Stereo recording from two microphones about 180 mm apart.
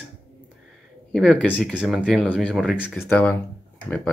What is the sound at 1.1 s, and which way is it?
Speech, 5° left (ahead or behind).